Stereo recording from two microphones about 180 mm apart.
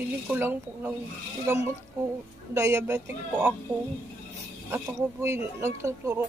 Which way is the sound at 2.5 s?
15° right (ahead or behind).